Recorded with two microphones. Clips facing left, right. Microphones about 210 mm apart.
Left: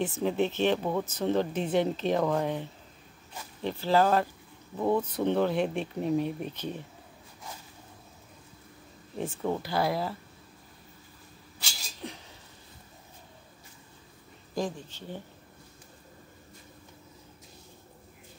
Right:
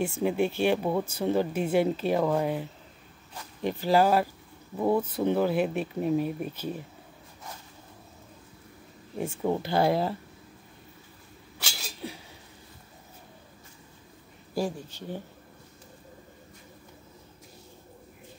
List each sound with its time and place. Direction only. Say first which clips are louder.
0.0 s speech: right 1 dB; 10° right (ahead or behind)
9.4 s speech: right 4 dB; 20° right (ahead or behind)
12.0 s a sound: right 2 dB; 5° right (ahead or behind)
14.5 s speech: right 2 dB; 10° right (ahead or behind)